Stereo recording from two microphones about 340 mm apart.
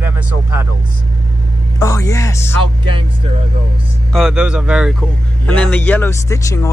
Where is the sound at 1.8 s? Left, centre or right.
Centre.